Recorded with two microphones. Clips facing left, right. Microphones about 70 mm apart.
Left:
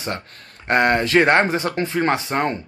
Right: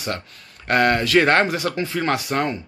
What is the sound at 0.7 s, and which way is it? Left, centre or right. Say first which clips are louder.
Speech: left 1 dB; left.